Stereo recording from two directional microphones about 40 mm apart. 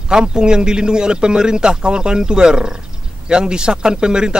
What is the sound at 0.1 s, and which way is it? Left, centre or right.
Speech, right.